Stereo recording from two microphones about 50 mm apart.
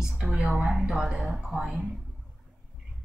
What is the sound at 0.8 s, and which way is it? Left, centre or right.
Speech, centre.